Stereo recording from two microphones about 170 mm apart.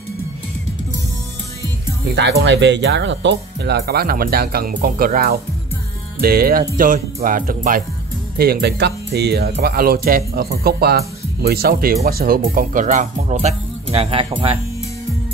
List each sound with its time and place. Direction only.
2.1 s speech: 90° right; by 7.8 s 55° right (ahead or behind)
8.4 s speech: 65° right (ahead or behind); by 14.6 s 35° right (ahead or behind)